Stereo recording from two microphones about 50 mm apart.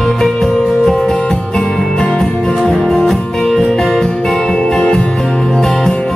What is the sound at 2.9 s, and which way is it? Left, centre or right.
Music, centre.